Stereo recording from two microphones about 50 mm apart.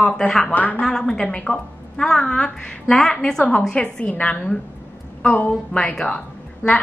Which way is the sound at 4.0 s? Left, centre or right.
Left.